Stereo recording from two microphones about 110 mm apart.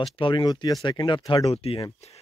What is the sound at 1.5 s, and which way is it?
Speech, 60° left (ahead or behind).